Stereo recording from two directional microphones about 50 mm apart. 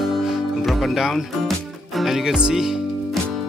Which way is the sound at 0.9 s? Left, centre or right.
Centre.